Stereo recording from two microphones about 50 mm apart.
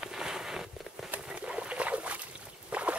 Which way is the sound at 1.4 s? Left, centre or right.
Right.